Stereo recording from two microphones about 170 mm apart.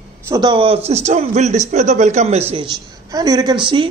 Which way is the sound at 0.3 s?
25° right (ahead or behind).